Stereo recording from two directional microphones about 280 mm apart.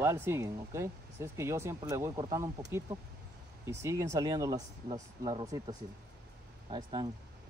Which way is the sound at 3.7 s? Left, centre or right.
Centre.